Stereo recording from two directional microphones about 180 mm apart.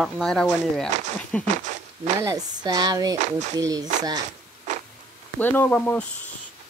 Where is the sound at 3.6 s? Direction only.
20° right (ahead or behind).